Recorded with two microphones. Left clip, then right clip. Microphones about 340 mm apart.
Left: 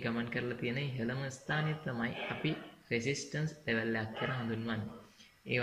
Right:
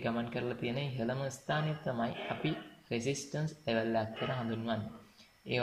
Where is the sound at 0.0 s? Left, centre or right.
Centre.